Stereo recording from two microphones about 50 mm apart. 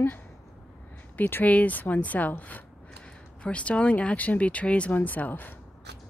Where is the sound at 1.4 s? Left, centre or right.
Left.